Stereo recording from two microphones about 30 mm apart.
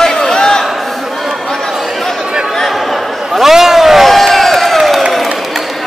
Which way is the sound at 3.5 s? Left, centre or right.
Centre.